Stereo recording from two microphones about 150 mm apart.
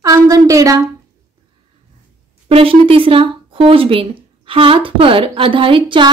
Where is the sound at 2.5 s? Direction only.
40° right (ahead or behind).